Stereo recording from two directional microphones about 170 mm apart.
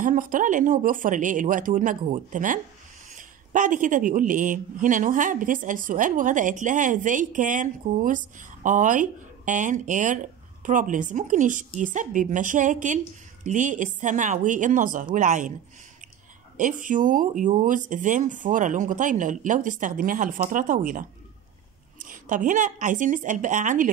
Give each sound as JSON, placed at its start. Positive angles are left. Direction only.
{"t": 0.0, "sound": "speech", "side_deg": -50}
{"t": 16.5, "sound": "speech", "side_deg": -50}